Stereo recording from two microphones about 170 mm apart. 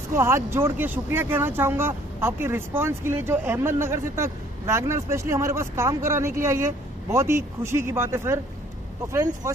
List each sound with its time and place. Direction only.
0.1 s speech: 15° right (ahead or behind)